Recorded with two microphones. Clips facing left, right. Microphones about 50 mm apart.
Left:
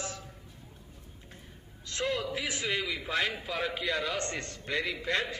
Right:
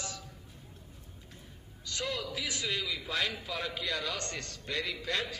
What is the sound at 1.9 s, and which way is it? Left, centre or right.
A man's voice, left.